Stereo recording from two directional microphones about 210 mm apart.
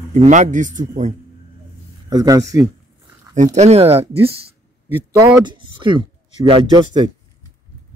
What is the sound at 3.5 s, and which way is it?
Speech, 30° right (ahead or behind).